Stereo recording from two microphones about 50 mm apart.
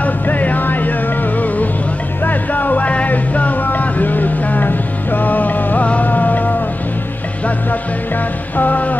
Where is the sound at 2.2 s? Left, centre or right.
Left.